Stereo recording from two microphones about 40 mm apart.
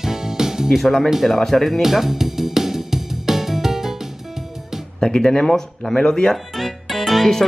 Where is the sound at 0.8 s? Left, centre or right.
Centre.